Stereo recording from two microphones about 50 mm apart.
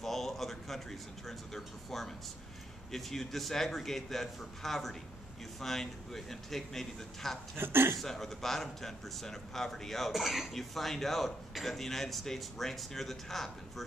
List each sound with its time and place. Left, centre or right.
0.0 s speech: centre
7.5 s speech: right
8.0 s speech: centre